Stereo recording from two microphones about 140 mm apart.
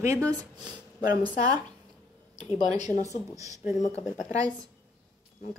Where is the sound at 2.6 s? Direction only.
55° left (ahead or behind).